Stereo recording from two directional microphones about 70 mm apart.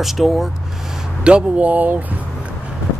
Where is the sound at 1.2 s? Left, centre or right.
Centre.